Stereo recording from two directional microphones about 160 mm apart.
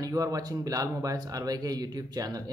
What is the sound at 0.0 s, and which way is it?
Speech, 20° right (ahead or behind).